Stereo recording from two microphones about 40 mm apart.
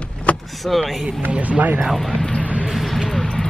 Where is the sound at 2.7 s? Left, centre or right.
Centre.